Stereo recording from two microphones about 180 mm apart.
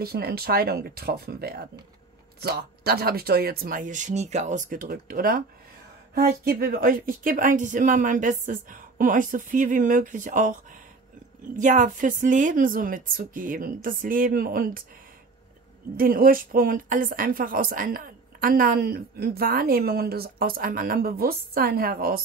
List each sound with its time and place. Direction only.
0.0 s speech: 60° right (ahead or behind)
16.0 s speech: 55° right (ahead or behind)